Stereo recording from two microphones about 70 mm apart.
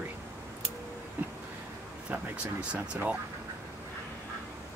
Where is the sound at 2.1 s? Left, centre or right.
Right.